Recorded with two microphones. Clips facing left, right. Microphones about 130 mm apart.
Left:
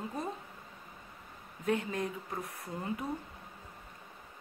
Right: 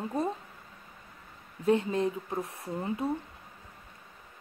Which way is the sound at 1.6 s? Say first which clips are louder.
Right 7 dB; 30° right (ahead or behind).